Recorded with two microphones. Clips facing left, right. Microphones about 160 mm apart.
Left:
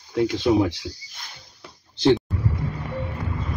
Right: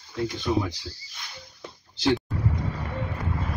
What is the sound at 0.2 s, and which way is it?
Speech, 90° left.